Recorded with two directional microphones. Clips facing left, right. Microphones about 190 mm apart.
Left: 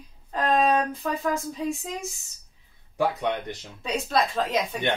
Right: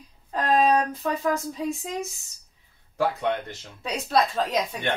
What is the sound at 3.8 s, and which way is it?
Laughter, centre (ahead or behind).